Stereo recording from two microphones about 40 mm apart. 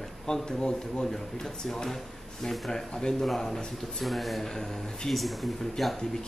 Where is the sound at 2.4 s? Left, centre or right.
Centre.